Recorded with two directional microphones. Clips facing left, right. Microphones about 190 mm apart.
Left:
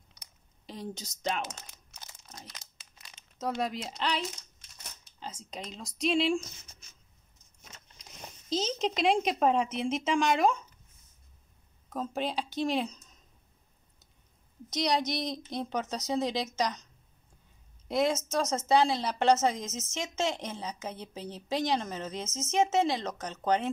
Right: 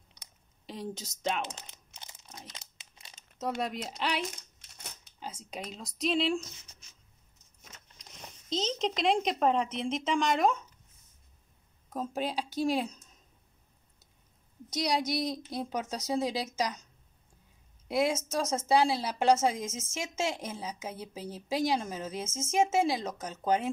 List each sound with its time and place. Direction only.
0.7 s speech: centre (ahead or behind)
1.5 s crumpling: 20° right (ahead or behind)
3.3 s speech: centre (ahead or behind)
5.2 s speech: 5° right (ahead or behind)
8.5 s speech: 5° left (ahead or behind)
11.9 s speech: 5° right (ahead or behind)
14.7 s speech: 5° right (ahead or behind)
17.8 s speech: 5° right (ahead or behind)